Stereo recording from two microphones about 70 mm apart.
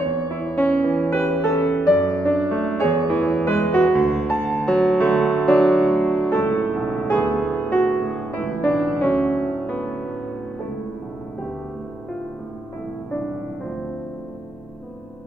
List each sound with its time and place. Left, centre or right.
0.3 s music: left
3.9 s music: centre
6.2 s music: left
6.7 s music: centre
7.1 s music: centre
8.3 s music: centre